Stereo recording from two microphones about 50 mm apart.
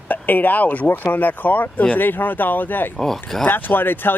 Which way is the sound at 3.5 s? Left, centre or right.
Left.